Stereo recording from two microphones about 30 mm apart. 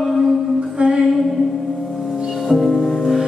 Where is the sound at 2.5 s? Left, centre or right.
Centre.